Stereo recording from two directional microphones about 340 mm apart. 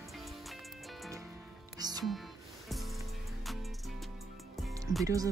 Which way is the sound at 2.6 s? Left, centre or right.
Centre.